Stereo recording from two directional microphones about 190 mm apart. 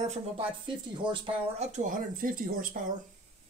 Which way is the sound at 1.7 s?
40° right (ahead or behind).